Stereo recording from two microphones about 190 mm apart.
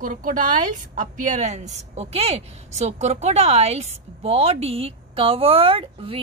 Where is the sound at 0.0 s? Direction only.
45° right (ahead or behind).